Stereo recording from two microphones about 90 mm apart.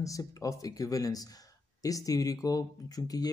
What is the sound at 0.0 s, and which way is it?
A man's voice, 40° left (ahead or behind).